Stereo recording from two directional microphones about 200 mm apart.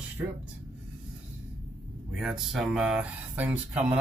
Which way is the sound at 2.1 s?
Centre (ahead or behind).